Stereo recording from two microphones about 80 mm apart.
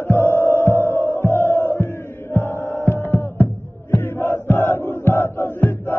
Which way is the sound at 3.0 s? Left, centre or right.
Left.